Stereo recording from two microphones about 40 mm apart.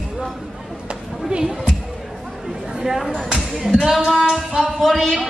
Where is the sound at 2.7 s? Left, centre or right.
Centre.